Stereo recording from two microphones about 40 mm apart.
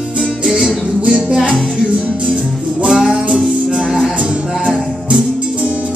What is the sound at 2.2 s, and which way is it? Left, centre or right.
Music, right.